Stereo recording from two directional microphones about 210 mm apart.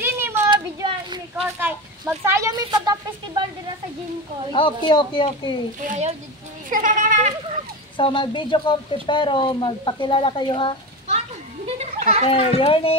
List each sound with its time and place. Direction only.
0.0 s a sound: 10° right (ahead or behind)
0.5 s a sound: 20° right (ahead or behind)
1.3 s speech: 5° right (ahead or behind)
4.5 s speech: 25° left (ahead or behind)
5.9 s speech: 30° right (ahead or behind)
8.0 s speech: 25° left (ahead or behind)
12.3 s speech: 25° left (ahead or behind)